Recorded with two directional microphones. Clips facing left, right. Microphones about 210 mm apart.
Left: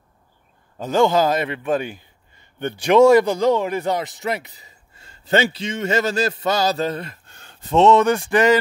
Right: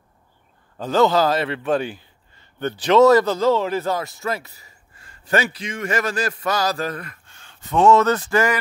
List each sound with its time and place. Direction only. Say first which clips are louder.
0.7 s a man's voice: even; 10° left (ahead or behind)
7.2 s a sound: left 2 dB; 40° left (ahead or behind)
7.7 s a man's voice: left 1 dB; 20° left (ahead or behind)